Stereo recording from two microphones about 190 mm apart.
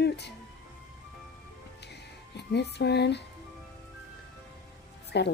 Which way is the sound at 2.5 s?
60° left (ahead or behind).